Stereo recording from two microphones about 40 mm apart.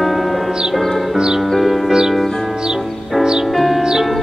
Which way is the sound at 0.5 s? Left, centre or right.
Centre.